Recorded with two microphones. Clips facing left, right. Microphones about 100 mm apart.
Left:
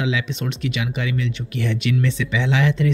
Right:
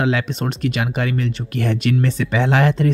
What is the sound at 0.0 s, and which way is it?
Speech, 45° right (ahead or behind).